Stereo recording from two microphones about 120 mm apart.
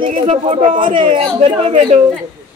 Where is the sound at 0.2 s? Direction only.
50° right (ahead or behind).